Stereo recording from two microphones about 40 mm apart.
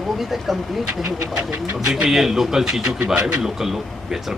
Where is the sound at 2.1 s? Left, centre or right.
Centre.